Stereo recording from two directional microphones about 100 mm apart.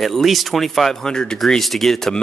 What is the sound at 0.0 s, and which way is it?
A man's voice, centre (ahead or behind).